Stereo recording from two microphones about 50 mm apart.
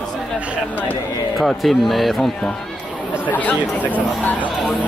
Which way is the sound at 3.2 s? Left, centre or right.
Left.